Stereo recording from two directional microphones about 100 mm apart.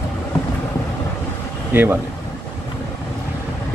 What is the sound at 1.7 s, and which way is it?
Speech, 20° right (ahead or behind).